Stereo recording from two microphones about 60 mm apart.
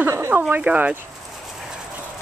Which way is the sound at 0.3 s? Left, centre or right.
Right.